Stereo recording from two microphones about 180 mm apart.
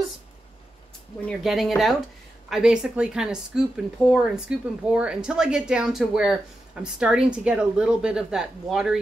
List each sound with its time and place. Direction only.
1.2 s speech: centre (ahead or behind)